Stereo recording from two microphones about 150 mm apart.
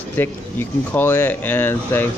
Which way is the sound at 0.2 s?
15° left (ahead or behind).